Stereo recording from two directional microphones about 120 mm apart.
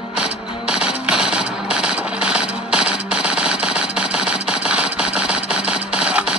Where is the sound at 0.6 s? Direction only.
5° right (ahead or behind).